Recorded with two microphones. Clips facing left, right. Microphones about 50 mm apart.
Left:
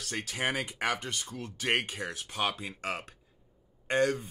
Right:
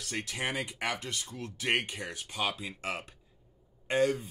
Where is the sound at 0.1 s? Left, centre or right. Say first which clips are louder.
Left 2 dB; centre.